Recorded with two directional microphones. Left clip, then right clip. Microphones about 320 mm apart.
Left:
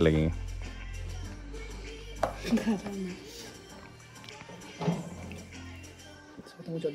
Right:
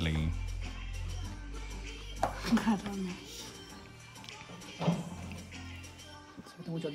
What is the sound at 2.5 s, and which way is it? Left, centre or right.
Speech, centre.